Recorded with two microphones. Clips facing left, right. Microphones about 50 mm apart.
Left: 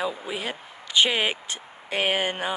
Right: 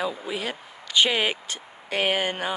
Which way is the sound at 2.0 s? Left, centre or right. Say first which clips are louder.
Even; centre.